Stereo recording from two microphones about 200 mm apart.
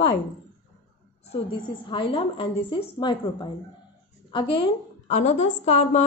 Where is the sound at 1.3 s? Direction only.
25° left (ahead or behind).